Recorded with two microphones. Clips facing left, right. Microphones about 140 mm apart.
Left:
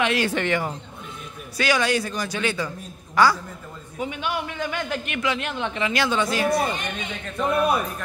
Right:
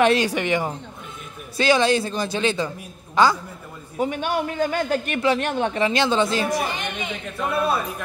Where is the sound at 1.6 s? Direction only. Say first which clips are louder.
Right 4 dB; 25° right (ahead or behind).